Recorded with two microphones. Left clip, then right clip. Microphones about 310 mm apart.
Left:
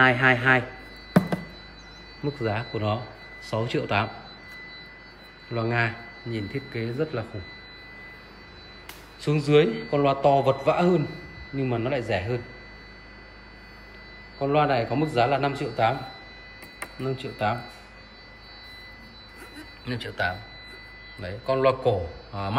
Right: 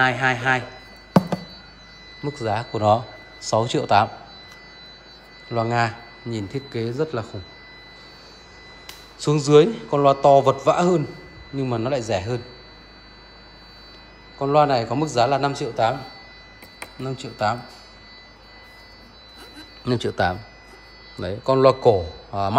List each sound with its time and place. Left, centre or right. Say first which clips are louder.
0.0 s a man's voice: even; centre
2.4 s a man's voice: right 9 dB; centre
5.5 s a man's voice: right 4 dB; centre
9.2 s a man's voice: right 5 dB; centre
14.4 s a man's voice: right 5 dB; centre
17.0 s a man's voice: right 3 dB; centre
19.8 s a man's voice: right 7 dB; centre